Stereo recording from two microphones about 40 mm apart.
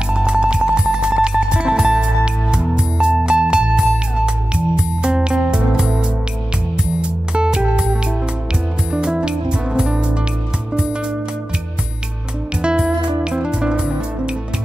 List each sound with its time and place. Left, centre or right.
0.1 s music: right
12.6 s music: right